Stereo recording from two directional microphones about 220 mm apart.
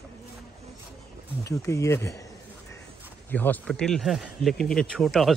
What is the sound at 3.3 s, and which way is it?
Speech, 5° left (ahead or behind).